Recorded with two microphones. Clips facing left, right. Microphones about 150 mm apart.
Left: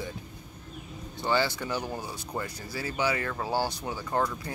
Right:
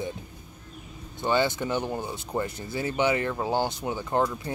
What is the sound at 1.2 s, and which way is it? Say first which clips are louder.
Speech: right 3 dB; 20° right (ahead or behind).